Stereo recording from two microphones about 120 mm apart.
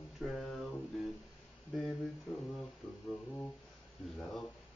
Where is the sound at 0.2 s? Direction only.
Centre (ahead or behind).